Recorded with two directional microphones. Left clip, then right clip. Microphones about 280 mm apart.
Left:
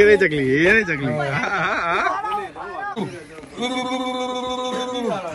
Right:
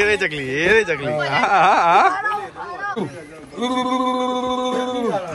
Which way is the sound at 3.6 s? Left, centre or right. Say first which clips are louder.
Right 4 dB; centre.